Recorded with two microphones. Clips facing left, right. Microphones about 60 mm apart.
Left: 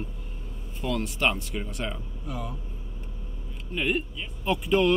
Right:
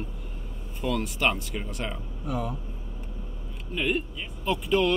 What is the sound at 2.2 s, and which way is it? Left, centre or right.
Speech, right.